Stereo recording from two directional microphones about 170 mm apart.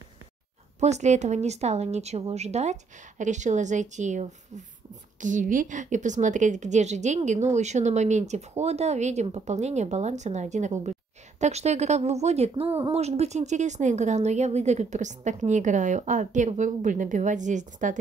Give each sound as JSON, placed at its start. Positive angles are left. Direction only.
{"t": 0.7, "sound": "a woman's voice", "side_deg": -40}